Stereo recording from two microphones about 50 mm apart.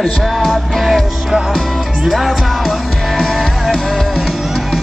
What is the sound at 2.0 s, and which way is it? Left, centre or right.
Music, centre.